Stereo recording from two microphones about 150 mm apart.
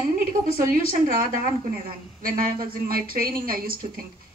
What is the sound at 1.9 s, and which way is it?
A woman's voice, 75° right (ahead or behind).